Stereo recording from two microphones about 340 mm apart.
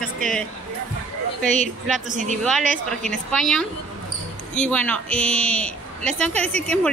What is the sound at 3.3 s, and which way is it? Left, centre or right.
A woman's voice, centre.